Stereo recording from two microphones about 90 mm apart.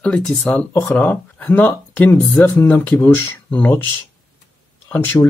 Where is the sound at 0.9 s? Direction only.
20° left (ahead or behind).